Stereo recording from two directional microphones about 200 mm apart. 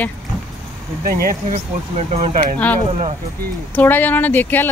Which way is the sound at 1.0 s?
45° right (ahead or behind).